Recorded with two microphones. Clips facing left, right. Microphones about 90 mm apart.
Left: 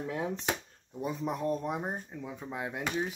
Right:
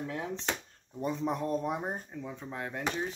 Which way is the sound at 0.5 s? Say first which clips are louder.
Left 2 dB; 5° left (ahead or behind).